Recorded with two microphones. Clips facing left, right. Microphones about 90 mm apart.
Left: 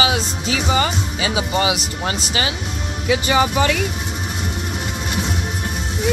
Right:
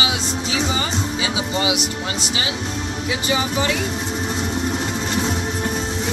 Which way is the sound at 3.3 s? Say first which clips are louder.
Left 3 dB; 75° left (ahead or behind).